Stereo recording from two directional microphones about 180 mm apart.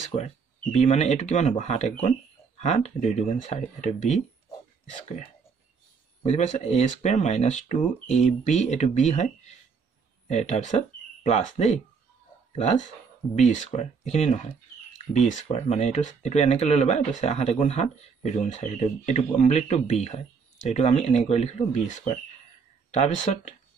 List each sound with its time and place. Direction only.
0.0 s speech: 40° left (ahead or behind)